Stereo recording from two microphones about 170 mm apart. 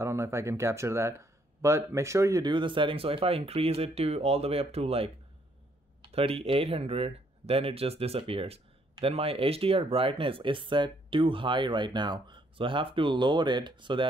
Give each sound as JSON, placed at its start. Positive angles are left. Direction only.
{"t": 0.0, "sound": "speech", "side_deg": -15}